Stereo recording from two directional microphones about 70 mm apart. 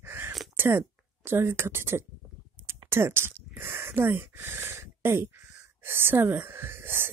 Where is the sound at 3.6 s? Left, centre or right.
Right.